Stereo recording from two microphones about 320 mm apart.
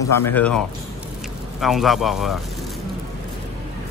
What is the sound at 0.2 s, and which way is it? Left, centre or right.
Speech, centre.